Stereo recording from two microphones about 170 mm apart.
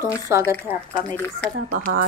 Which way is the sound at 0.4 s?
15° left (ahead or behind).